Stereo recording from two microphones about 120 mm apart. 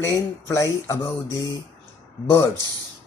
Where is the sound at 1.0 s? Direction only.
30° left (ahead or behind).